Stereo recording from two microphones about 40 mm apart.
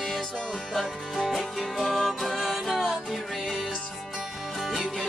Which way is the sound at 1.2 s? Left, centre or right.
Centre.